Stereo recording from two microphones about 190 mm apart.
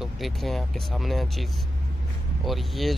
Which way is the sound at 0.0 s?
Centre (ahead or behind).